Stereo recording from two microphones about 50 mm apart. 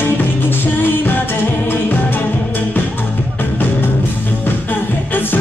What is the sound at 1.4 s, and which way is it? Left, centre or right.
Music, left.